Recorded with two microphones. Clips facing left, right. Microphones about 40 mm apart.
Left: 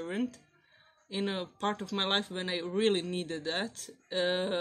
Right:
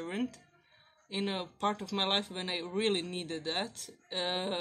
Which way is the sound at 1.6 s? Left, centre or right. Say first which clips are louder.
Right 1 dB; centre.